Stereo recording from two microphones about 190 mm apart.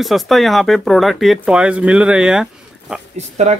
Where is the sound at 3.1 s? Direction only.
35° right (ahead or behind).